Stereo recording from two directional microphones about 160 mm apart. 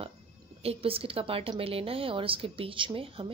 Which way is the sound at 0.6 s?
35° right (ahead or behind).